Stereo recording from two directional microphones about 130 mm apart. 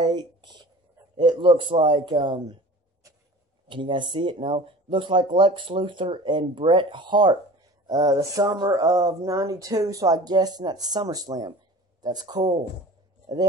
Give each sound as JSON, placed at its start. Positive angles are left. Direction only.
{"t": 0.0, "sound": "a sound", "side_deg": -30}
{"t": 1.1, "sound": "speech", "side_deg": -35}
{"t": 3.6, "sound": "speech", "side_deg": -40}